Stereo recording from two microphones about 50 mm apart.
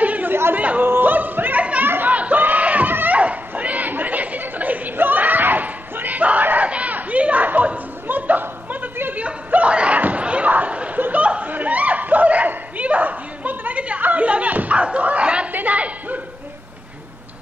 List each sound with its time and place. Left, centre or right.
0.0 s chatter: right
0.3 s chatter: right
0.6 s speech: right
0.8 s yodeling: right
1.6 s chatter: right
2.0 s crowd: right
2.9 s a sound: right
3.2 s chatter: right
9.2 s slam: right
11.0 s snicker: right
15.5 s a sound: right